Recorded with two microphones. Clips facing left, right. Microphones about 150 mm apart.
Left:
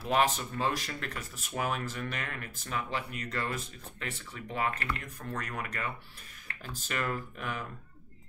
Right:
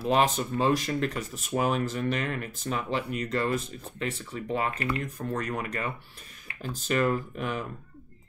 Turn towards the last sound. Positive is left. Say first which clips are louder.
# right 6 dB
turn(degrees=-25)  # may be behind; listen again after turning